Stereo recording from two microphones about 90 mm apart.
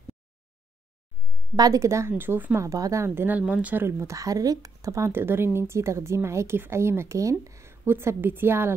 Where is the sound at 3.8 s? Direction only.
30° right (ahead or behind).